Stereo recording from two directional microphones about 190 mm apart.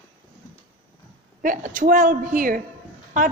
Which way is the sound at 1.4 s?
45° right (ahead or behind).